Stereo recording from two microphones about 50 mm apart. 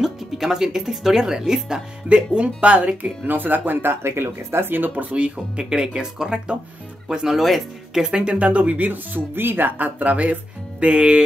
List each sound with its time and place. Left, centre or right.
0.0 s speech: centre; by 3.9 s right
4.0 s speech: right
4.7 s speech: right
5.1 s speech: centre
7.2 s speech: centre
8.0 s speech: centre